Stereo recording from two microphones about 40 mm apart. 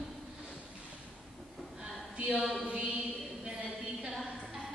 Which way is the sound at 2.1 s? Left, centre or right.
Right.